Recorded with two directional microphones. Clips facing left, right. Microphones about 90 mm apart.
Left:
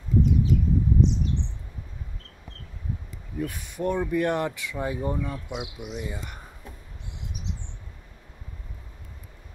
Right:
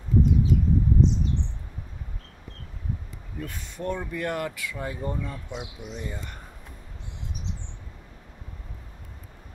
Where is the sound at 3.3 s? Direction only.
15° left (ahead or behind).